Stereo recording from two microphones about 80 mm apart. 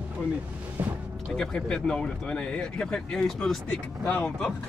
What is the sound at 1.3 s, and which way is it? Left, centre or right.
Speech, centre.